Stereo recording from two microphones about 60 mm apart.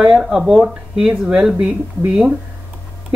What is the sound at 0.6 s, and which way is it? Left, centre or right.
Speech, centre.